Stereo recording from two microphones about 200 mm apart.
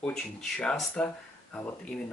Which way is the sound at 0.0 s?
5° left (ahead or behind).